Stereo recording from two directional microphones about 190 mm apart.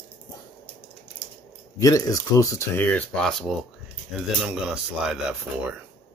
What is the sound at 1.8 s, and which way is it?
Speech, 15° left (ahead or behind).